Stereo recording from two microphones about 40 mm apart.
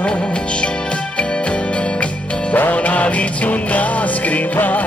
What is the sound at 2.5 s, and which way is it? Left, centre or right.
Music, left.